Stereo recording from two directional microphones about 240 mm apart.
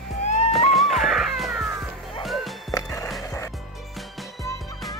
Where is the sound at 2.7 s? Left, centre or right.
Centre.